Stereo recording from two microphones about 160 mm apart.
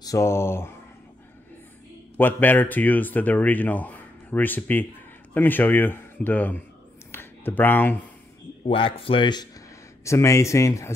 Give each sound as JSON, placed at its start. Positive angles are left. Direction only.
{"t": 0.0, "sound": "speech", "side_deg": 20}
{"t": 2.1, "sound": "a man's voice", "side_deg": 10}
{"t": 7.1, "sound": "a sound", "side_deg": 15}
{"t": 8.6, "sound": "speech", "side_deg": 35}
{"t": 10.0, "sound": "speech", "side_deg": 20}